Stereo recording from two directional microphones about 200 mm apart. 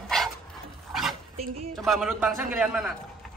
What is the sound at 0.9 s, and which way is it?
Dog, centre (ahead or behind).